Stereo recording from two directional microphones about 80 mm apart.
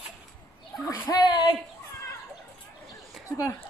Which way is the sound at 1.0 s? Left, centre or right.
Left.